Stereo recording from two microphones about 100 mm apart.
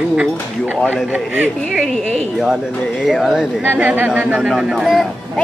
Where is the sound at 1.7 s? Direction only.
5° right (ahead or behind).